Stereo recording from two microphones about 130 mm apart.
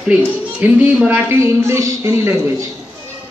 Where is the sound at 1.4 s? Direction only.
20° right (ahead or behind).